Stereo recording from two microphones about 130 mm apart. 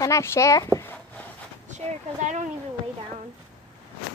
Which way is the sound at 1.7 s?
65° right (ahead or behind).